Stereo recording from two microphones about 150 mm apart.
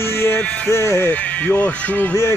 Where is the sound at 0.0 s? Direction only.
15° left (ahead or behind).